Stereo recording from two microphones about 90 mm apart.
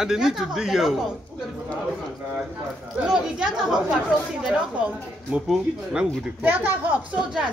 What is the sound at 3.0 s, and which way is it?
Speech, 5° right (ahead or behind).